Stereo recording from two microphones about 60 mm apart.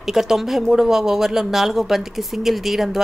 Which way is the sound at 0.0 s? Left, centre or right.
Centre.